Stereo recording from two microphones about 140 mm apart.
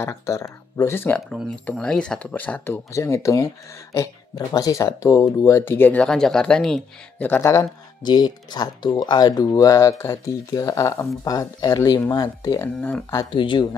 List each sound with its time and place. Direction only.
0.0 s speech: 20° left (ahead or behind); by 7.2 s 5° left (ahead or behind)
7.2 s speech: 15° left (ahead or behind); by 13.7 s 35° left (ahead or behind)